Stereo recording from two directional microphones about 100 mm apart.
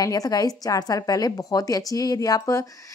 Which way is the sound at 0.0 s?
40° left (ahead or behind).